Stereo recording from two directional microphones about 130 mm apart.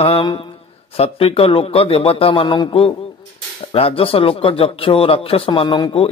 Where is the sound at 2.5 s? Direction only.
35° left (ahead or behind).